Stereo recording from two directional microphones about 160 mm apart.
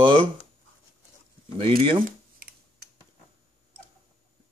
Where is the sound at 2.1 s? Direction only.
65° right (ahead or behind).